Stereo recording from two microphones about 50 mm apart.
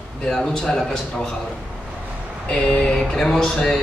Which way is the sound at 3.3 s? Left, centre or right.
Centre.